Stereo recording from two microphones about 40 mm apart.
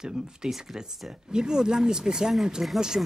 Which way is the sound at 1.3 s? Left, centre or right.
Centre.